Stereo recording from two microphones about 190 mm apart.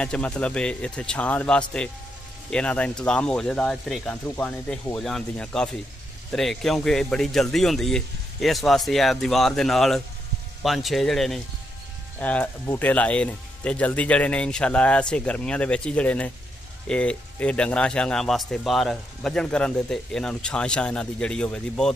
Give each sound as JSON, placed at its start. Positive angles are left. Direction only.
{"t": 0.0, "sound": "speech", "side_deg": 5}